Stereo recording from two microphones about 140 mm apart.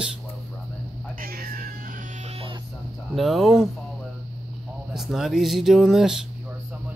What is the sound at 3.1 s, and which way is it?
Speech, centre (ahead or behind).